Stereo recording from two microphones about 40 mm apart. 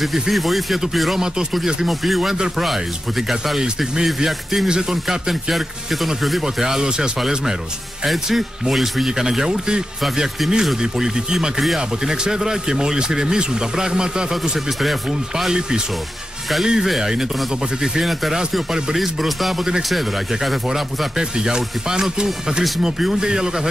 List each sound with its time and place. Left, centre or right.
0.0 s speech: centre
6.4 s speech: centre
10.0 s speech: centre
10.8 s speech: centre
14.8 s speech: centre
18.0 s speech: centre
21.2 s speech: centre